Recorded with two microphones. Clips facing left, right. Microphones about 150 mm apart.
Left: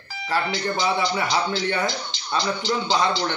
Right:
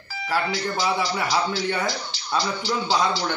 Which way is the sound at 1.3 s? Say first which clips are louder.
Even; centre (ahead or behind).